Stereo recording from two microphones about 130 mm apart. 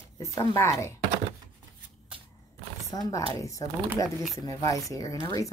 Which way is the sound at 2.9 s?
30° left (ahead or behind).